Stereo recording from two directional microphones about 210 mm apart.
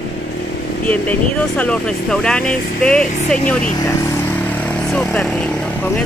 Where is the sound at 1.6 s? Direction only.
5° left (ahead or behind).